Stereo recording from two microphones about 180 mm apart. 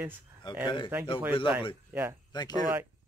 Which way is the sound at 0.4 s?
25° left (ahead or behind).